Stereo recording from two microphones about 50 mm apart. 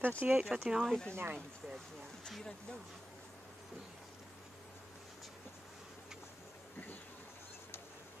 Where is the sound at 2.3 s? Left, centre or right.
Centre.